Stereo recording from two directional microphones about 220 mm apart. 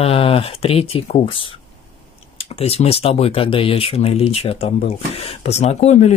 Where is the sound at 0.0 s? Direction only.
25° left (ahead or behind).